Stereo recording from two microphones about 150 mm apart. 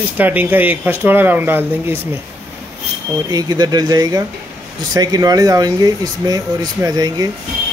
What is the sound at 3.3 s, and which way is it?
Speech, 25° right (ahead or behind).